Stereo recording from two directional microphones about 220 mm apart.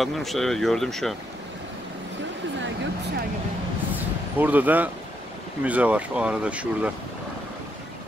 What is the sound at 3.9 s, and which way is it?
Vehicle, 10° right (ahead or behind).